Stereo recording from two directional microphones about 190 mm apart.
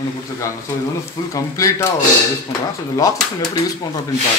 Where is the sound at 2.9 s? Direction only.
20° left (ahead or behind).